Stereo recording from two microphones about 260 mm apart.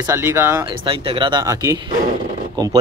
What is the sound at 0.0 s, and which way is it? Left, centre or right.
Speech, centre.